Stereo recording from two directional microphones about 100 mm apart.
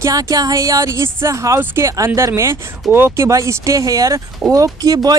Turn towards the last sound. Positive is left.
turn(degrees=-40)  # may be behind; listen again after turning